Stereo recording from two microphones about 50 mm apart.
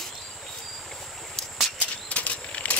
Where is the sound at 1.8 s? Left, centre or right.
Left.